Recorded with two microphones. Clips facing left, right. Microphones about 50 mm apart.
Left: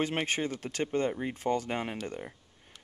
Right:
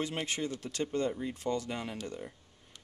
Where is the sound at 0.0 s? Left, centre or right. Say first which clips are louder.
Left 4 dB; left.